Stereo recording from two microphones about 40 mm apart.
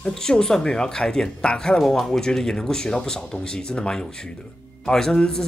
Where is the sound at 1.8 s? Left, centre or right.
Centre.